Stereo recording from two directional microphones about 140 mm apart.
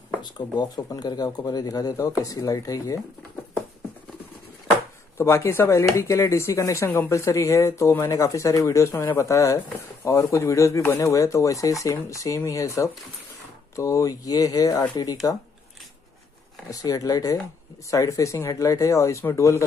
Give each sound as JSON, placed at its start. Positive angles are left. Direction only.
{"t": 0.2, "sound": "speech", "side_deg": 30}
{"t": 5.1, "sound": "speech", "side_deg": 20}
{"t": 16.7, "sound": "speech", "side_deg": 25}